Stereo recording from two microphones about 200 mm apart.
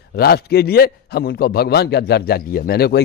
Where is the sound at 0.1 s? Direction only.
50° left (ahead or behind).